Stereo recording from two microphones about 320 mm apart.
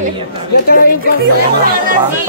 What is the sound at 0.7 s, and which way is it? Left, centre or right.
Speech, left.